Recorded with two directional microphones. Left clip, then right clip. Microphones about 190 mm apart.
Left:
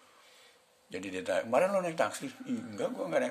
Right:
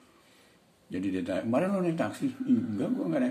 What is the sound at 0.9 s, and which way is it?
A man's voice, 40° left (ahead or behind).